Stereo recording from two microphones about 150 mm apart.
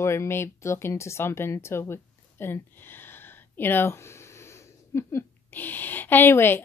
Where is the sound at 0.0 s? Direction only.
20° left (ahead or behind).